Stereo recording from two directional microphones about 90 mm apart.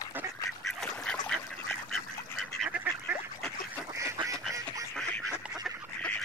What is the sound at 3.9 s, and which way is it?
Duck, 35° right (ahead or behind).